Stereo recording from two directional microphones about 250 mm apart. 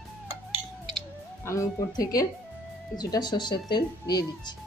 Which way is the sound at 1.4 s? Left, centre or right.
Centre.